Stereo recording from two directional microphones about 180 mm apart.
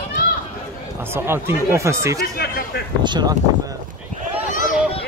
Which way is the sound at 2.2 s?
55° left (ahead or behind).